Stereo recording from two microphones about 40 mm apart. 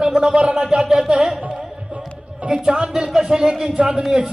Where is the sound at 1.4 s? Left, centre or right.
Right.